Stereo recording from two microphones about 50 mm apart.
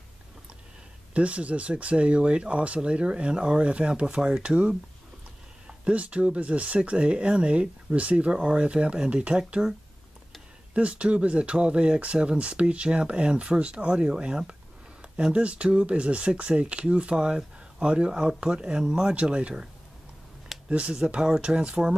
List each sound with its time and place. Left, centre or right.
1.1 s speech: right
10.7 s speech: right